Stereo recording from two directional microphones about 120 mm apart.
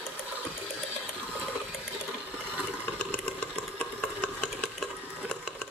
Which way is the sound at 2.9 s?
10° left (ahead or behind).